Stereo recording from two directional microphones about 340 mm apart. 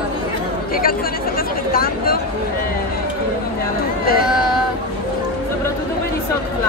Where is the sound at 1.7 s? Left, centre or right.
Left.